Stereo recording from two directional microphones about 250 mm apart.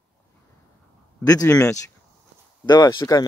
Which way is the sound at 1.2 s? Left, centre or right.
Centre.